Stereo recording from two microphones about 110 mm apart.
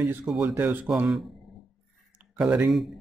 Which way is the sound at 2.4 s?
5° right (ahead or behind).